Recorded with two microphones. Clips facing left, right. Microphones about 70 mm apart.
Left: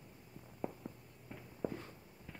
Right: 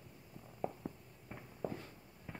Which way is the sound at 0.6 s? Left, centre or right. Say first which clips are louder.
Right 2 dB; centre.